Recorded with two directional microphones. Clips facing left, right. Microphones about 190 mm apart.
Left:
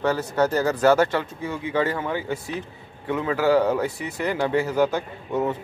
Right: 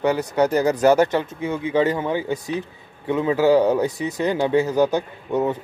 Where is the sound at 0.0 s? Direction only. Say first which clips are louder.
Right 3 dB; 15° right (ahead or behind).